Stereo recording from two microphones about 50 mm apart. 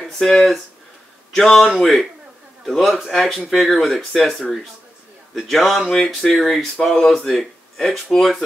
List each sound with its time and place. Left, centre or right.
0.0 s speech: centre
5.3 s speech: centre